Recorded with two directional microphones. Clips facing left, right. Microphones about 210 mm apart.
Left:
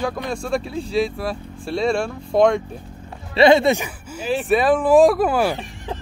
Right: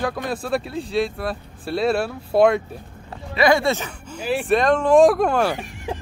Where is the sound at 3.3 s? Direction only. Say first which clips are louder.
Left 4 dB; 25° left (ahead or behind); by 5.6 s 5° left (ahead or behind).